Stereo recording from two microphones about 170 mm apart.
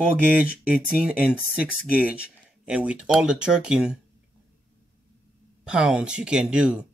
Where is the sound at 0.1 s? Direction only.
5° right (ahead or behind).